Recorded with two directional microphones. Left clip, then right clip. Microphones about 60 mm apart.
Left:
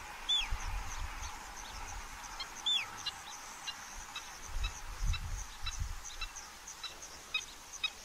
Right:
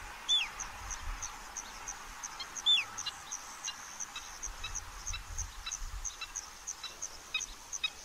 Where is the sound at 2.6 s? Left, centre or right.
Right.